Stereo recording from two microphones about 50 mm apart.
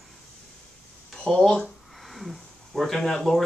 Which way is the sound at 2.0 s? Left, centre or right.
Centre.